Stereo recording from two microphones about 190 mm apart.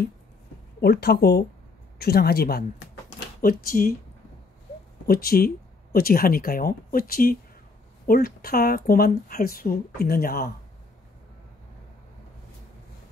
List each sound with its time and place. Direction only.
0.7 s speech: 55° left (ahead or behind)
5.0 s speech: 50° left (ahead or behind)